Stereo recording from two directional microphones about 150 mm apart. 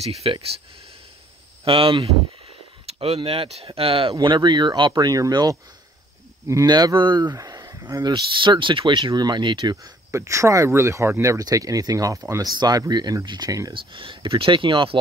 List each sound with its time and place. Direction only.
0.0 s speech: 40° right (ahead or behind)
1.6 s speech: 35° right (ahead or behind)
13.7 s speech: 35° right (ahead or behind)